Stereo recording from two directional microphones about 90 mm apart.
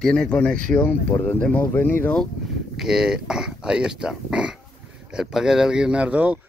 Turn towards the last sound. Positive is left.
turn(degrees=-15)  # may be behind; listen again after turning